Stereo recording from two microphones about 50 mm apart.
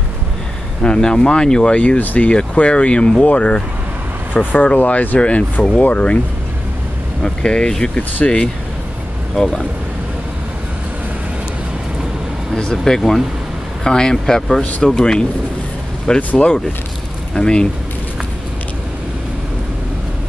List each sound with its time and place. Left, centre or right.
0.8 s speech: centre
7.2 s speech: centre
9.3 s speech: centre
12.8 s speech: centre
16.2 s speech: left
17.3 s speech: centre